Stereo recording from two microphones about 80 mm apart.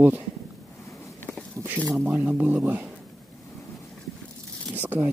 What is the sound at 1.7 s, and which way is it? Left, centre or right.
Speech, right.